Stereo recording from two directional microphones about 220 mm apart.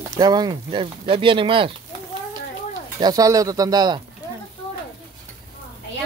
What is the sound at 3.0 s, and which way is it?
Speech, 15° right (ahead or behind).